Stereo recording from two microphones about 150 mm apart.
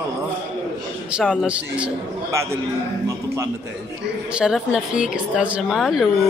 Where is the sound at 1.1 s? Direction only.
Centre (ahead or behind).